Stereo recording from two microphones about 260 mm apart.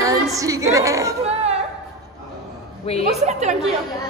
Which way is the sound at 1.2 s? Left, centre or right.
Right.